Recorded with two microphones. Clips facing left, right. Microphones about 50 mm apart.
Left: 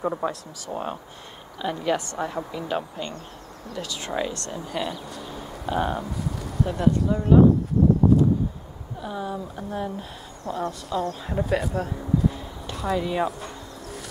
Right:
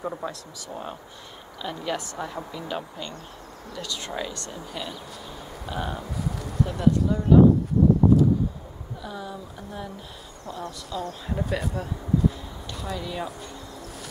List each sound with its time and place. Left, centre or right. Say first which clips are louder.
0.0 s speech: left 5 dB; centre
1.6 s speech: left 5 dB; centre
3.7 s speech: left 3 dB; centre
6.1 s speech: even; centre
9.0 s speech: left 6 dB; left
13.0 s speech: left 6 dB; left